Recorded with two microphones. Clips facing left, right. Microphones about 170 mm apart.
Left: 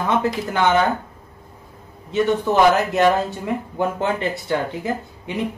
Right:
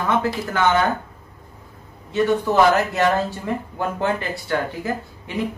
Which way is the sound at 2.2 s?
20° left (ahead or behind).